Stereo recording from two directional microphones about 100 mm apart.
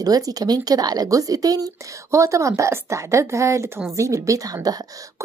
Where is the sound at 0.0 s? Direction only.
40° right (ahead or behind).